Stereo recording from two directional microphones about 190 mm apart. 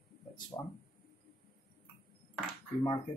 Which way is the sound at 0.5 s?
20° left (ahead or behind).